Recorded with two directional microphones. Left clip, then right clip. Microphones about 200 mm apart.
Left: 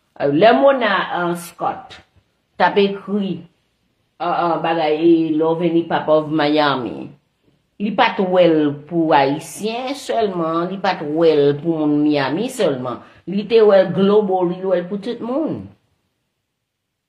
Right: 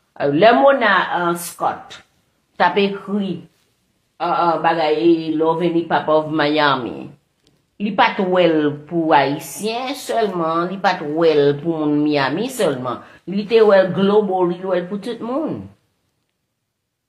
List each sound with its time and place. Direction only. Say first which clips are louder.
0.1 s a woman's voice: even; 20° left (ahead or behind)
1.6 s a woman's voice: even; 30° left (ahead or behind)